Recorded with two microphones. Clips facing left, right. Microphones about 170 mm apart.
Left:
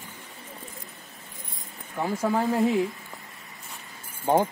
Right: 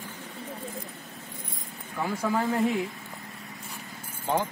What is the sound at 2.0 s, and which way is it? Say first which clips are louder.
Speech: left 2 dB; 20° left (ahead or behind).